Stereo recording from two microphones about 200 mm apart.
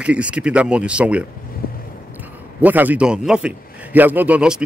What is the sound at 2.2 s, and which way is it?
A man's voice, 10° right (ahead or behind).